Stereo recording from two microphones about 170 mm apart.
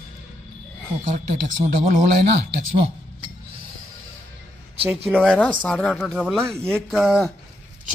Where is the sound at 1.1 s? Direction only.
40° right (ahead or behind).